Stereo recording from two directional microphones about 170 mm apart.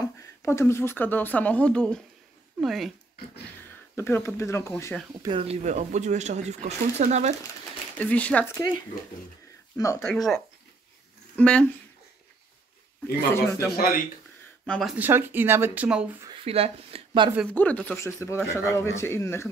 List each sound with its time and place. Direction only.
0.0 s speech: 15° left (ahead or behind); by 2.9 s centre (ahead or behind)
3.9 s speech: 15° left (ahead or behind)
5.2 s speech: 35° right (ahead or behind)
8.0 s speech: 10° left (ahead or behind)
9.8 s speech: 20° left (ahead or behind)
10.0 s speech: centre (ahead or behind)
13.0 s speech: 15° left (ahead or behind)
14.7 s speech: centre (ahead or behind)
15.0 s speech: 10° right (ahead or behind)
16.3 s speech: 35° right (ahead or behind)
17.5 s speech: 10° left (ahead or behind)